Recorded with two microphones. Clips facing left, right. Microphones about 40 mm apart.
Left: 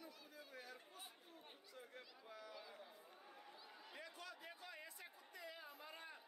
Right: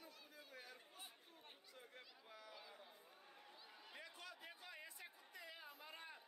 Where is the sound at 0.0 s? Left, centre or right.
Centre.